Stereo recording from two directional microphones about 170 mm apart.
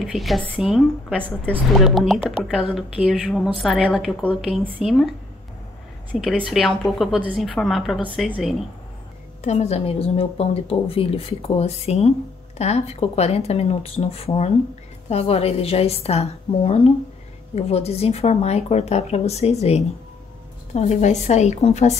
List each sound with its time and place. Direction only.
0.0 s a woman's voice: centre (ahead or behind)
6.1 s a woman's voice: centre (ahead or behind)
9.4 s a woman's voice: 40° left (ahead or behind)